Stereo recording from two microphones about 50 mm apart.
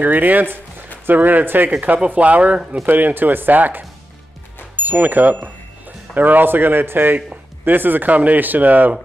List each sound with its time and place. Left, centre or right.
0.0 s speech: right